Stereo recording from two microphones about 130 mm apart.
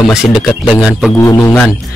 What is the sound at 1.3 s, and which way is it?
Speech, 20° left (ahead or behind).